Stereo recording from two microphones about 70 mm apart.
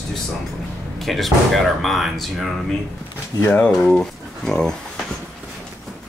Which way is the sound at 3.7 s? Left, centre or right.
Centre.